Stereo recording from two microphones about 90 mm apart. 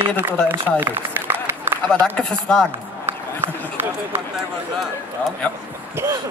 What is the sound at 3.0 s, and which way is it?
Run, 25° right (ahead or behind).